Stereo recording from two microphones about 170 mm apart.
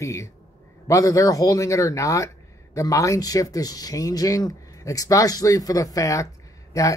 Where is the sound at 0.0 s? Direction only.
15° left (ahead or behind).